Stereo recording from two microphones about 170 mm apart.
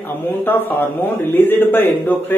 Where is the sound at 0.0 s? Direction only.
10° left (ahead or behind).